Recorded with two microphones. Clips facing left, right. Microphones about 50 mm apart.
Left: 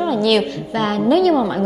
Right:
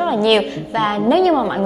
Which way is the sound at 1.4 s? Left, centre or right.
Centre.